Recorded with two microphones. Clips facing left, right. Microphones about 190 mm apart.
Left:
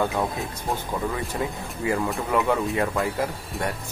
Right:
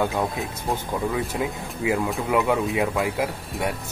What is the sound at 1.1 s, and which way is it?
Speech, 5° right (ahead or behind).